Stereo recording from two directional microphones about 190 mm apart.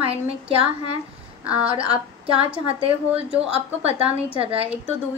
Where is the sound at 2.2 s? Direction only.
30° right (ahead or behind).